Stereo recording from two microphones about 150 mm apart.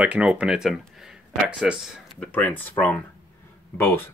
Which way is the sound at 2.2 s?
10° left (ahead or behind).